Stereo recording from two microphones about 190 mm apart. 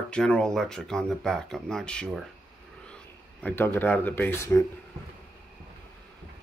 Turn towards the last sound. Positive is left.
turn(degrees=15)  # may be behind; listen again after turning